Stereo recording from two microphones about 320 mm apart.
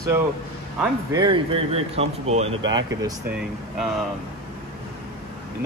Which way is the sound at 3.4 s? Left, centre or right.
Centre.